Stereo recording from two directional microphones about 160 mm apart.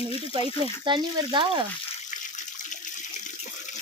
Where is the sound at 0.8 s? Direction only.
30° right (ahead or behind).